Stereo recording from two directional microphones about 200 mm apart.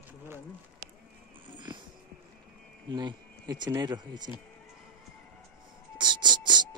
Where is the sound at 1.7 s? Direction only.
20° right (ahead or behind).